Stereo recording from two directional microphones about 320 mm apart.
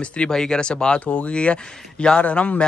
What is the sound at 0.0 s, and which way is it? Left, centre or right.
Speech, centre.